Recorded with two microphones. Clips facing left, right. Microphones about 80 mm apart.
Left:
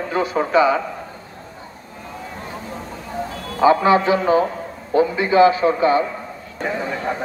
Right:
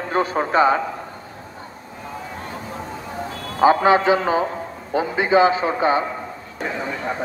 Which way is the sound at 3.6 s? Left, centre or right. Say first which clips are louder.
Even; right.